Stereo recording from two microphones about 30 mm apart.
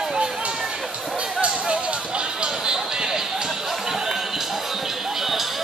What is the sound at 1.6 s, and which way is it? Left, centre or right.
Music, right.